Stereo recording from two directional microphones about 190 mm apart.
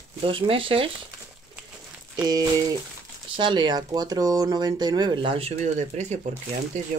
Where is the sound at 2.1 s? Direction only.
20° right (ahead or behind).